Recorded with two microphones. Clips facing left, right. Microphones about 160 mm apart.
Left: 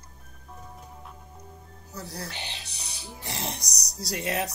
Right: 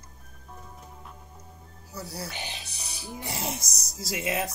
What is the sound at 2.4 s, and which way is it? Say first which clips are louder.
Speech: right 1 dB; 15° right (ahead or behind).